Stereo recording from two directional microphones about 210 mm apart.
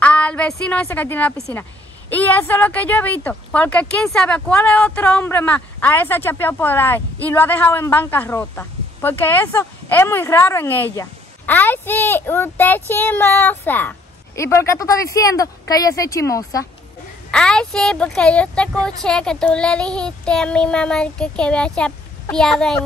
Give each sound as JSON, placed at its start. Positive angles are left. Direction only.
{"t": 0.0, "sound": "a woman's voice", "side_deg": 5}
{"t": 17.3, "sound": "speech", "side_deg": 5}